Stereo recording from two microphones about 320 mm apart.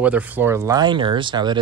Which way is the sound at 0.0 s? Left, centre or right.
Centre.